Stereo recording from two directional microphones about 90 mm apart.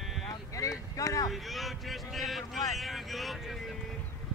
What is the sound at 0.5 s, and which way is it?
Boat, 40° left (ahead or behind).